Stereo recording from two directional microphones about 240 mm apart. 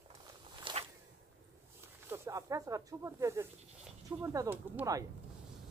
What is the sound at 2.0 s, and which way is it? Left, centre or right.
A man's voice, centre.